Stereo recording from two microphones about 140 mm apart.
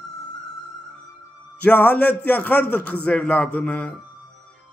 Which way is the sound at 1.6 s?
10° left (ahead or behind).